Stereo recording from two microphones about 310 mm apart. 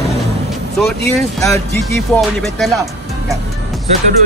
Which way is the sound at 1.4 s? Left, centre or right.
Centre.